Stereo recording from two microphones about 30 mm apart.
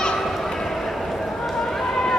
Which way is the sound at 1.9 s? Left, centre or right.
Centre.